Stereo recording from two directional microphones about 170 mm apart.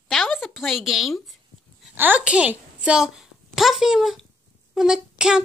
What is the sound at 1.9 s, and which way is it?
A woman's voice, 10° right (ahead or behind).